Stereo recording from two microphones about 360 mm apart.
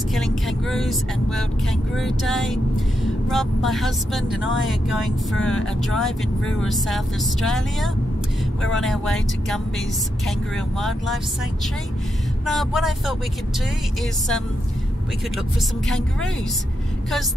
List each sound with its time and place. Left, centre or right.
0.1 s speech: centre
12.4 s speech: centre